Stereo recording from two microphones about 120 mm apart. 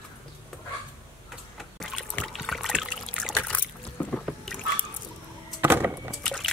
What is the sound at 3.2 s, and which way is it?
Trickle, 10° left (ahead or behind).